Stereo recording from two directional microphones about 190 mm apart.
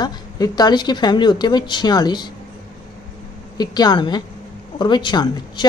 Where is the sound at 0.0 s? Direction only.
20° left (ahead or behind).